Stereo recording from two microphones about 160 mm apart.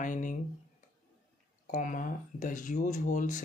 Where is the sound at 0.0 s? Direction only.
55° left (ahead or behind).